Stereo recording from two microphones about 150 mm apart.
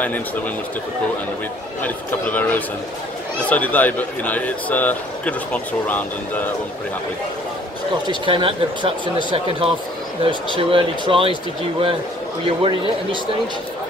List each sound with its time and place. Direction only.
1.8 s speech: 10° left (ahead or behind)
8.1 s speech: 35° right (ahead or behind)
12.4 s speech: 35° right (ahead or behind)